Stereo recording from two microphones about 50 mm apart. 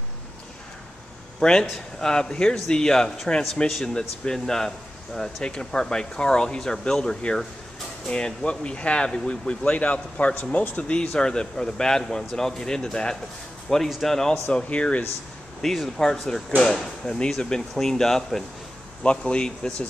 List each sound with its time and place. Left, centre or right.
1.4 s speech: centre
14.5 s speech: left
15.6 s speech: centre
19.0 s speech: centre